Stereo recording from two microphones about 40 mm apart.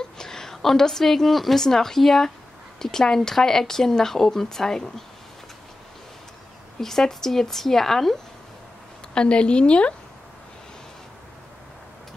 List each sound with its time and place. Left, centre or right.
0.2 s a woman's voice: centre
6.8 s speech: centre
9.1 s a woman's voice: left